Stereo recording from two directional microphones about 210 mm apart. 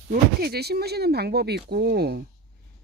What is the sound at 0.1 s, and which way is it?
Speech, 50° right (ahead or behind).